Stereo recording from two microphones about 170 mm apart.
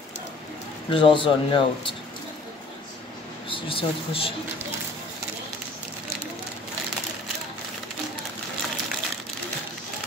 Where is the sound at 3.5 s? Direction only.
30° left (ahead or behind).